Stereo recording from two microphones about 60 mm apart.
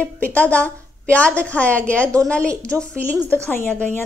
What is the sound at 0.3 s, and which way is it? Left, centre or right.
A woman's voice, left.